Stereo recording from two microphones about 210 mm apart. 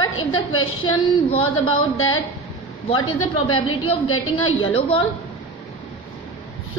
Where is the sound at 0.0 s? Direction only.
75° left (ahead or behind).